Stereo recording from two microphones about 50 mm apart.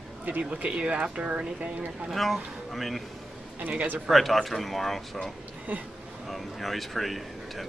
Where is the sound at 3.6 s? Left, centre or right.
Right.